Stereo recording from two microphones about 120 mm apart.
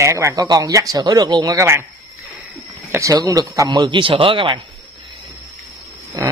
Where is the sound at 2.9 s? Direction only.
25° right (ahead or behind); by 4.6 s 45° right (ahead or behind).